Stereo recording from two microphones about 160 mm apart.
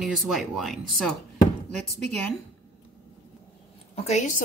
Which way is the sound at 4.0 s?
45° left (ahead or behind).